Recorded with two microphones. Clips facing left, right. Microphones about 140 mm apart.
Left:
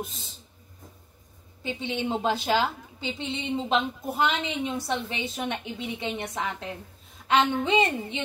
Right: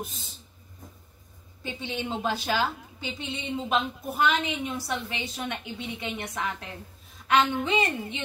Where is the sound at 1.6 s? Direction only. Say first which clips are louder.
Left 3 dB; 20° left (ahead or behind).